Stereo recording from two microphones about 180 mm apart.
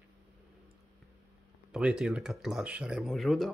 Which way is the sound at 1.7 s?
5° right (ahead or behind).